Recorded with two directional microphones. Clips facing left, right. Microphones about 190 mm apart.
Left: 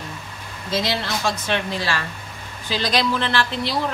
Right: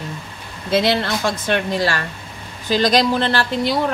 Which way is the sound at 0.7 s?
60° right (ahead or behind).